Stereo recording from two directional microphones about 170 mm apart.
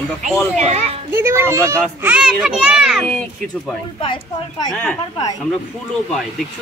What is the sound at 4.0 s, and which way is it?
Speech, 25° left (ahead or behind).